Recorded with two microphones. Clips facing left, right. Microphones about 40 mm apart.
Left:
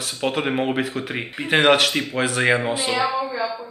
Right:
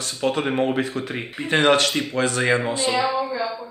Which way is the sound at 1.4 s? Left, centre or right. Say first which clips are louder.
Left 1 dB; left.